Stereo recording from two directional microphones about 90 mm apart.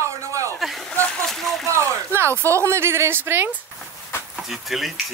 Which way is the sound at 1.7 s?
30° right (ahead or behind).